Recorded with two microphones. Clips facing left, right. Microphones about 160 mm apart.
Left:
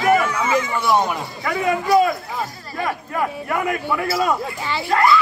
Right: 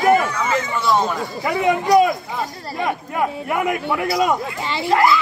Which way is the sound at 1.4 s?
20° right (ahead or behind).